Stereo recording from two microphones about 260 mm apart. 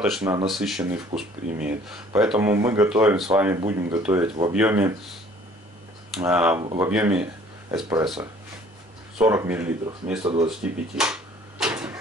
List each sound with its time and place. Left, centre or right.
0.0 s speech: centre
6.1 s speech: centre
9.2 s speech: centre
10.2 s speech: centre
10.6 s drawer open or close: centre